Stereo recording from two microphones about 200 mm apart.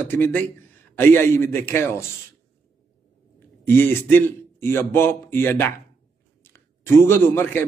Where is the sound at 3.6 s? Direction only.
10° left (ahead or behind).